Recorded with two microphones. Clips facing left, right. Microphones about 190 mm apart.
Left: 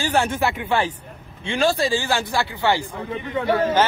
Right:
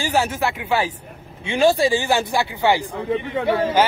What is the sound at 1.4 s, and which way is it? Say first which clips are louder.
A man's voice: right 4 dB; 20° right (ahead or behind).